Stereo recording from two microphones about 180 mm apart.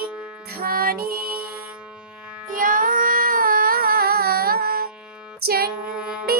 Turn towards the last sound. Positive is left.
turn(degrees=-5)  # may be behind; listen again after turning